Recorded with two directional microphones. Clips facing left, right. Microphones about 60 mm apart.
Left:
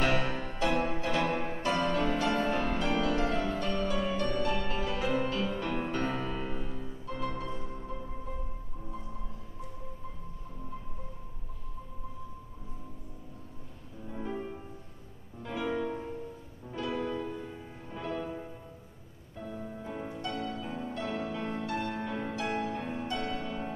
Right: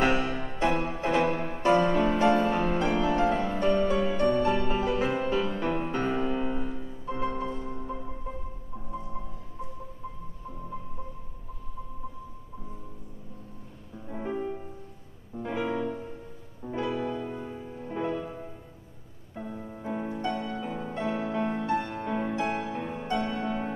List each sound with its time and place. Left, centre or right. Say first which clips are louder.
0.0 s music: right 4 dB; centre
7.1 s music: right 6 dB; right
14.0 s music: right 4 dB; right
15.3 s music: right 3 dB; right
19.3 s music: right 2 dB; right